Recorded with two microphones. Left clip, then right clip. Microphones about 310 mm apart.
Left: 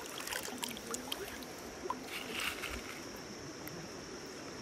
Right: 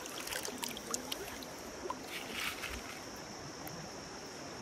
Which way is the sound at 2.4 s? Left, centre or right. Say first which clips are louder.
Left 1 dB; centre.